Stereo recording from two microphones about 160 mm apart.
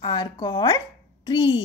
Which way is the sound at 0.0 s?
30° left (ahead or behind).